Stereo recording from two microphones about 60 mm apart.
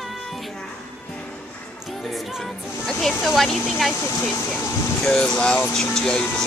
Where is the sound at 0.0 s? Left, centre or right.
Centre.